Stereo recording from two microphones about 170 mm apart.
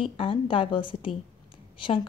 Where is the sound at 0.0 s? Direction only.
30° left (ahead or behind).